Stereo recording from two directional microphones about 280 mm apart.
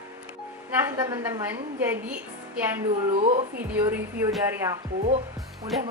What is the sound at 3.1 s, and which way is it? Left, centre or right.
Speech, right.